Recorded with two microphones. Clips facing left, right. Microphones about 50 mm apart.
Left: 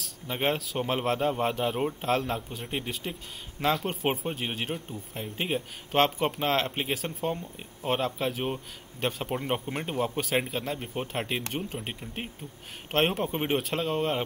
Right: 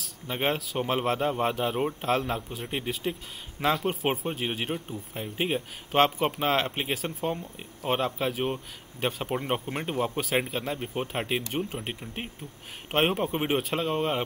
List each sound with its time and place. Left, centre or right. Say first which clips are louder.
0.0 s speech: even; centre